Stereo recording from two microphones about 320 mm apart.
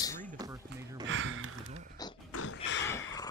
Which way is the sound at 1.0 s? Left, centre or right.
Right.